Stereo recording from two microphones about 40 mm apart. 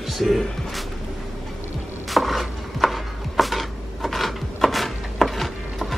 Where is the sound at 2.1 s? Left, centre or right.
Centre.